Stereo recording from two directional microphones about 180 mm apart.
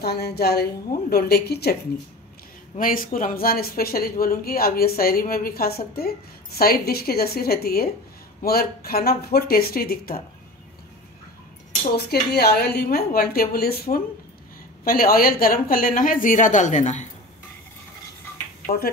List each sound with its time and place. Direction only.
0.0 s speech: 60° left (ahead or behind)
2.8 s speech: 50° left (ahead or behind)
12.1 s a woman's voice: 65° left (ahead or behind); by 17.1 s 40° left (ahead or behind)